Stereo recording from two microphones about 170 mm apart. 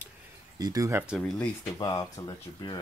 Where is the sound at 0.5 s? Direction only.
20° right (ahead or behind).